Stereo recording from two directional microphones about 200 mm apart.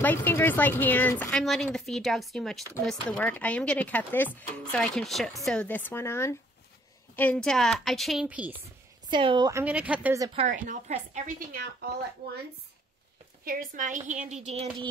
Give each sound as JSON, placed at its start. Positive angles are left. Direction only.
{"t": 0.0, "sound": "a woman's voice", "side_deg": 10}
{"t": 9.1, "sound": "a woman's voice", "side_deg": -25}
{"t": 9.5, "sound": "speech", "side_deg": -10}
{"t": 10.3, "sound": "speech", "side_deg": -35}
{"t": 13.4, "sound": "speech", "side_deg": -45}